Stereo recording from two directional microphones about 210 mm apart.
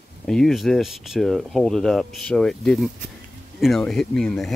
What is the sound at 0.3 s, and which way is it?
Speech, centre (ahead or behind).